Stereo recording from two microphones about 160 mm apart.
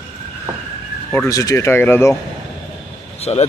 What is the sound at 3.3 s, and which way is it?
Speech, 35° left (ahead or behind).